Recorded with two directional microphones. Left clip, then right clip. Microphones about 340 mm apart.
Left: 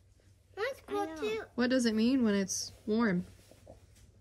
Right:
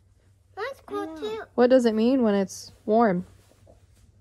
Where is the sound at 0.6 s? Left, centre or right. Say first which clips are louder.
Right 3 dB; centre.